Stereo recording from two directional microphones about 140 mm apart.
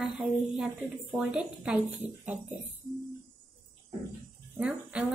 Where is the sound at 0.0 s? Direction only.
5° right (ahead or behind).